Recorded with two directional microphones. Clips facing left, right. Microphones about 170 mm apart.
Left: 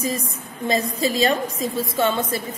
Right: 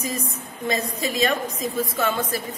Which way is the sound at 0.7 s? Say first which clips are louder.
Left 4 dB; 30° left (ahead or behind).